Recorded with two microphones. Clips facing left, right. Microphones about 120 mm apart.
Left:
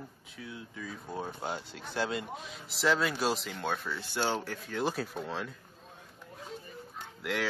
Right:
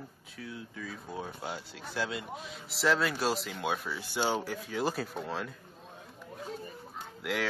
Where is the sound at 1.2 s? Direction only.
45° left (ahead or behind).